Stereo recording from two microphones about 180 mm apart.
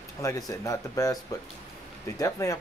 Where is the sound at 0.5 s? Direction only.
20° left (ahead or behind).